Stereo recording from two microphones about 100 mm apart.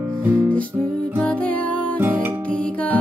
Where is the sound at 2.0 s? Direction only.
15° right (ahead or behind).